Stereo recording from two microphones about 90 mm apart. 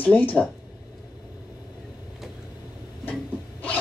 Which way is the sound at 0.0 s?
20° left (ahead or behind).